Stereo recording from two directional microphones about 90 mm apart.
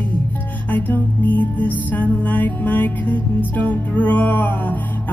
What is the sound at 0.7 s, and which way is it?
Music, 20° left (ahead or behind).